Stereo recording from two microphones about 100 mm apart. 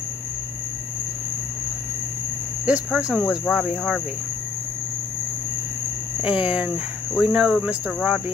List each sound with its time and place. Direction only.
2.6 s speech: 10° right (ahead or behind)
6.2 s speech: 10° right (ahead or behind)